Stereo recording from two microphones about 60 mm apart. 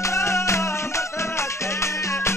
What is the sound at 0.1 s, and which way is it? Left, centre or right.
Music, left.